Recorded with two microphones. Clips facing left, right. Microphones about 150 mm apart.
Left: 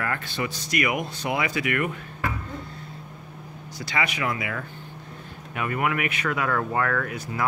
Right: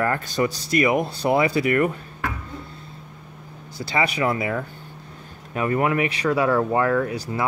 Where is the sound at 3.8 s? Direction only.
30° right (ahead or behind).